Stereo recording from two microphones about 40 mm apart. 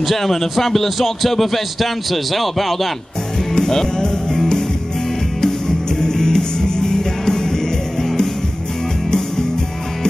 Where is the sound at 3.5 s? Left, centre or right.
Centre.